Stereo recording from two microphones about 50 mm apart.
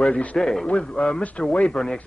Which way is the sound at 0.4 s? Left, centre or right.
Centre.